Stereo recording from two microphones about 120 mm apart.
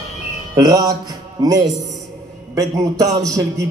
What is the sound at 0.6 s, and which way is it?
Speech, 30° right (ahead or behind).